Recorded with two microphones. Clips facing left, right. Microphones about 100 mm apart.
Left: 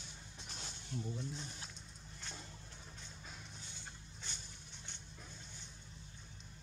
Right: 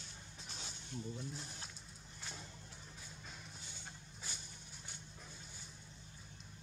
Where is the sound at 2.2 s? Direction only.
Centre (ahead or behind).